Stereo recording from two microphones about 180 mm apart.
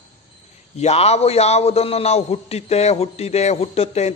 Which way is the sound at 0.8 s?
35° left (ahead or behind).